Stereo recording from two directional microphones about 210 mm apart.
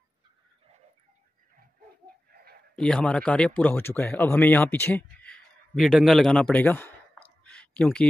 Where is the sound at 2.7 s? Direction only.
5° left (ahead or behind).